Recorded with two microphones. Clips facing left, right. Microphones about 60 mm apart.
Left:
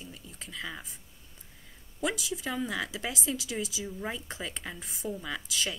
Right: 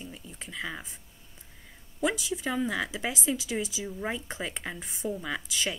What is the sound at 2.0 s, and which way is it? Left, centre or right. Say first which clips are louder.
Speech: right 3 dB; centre.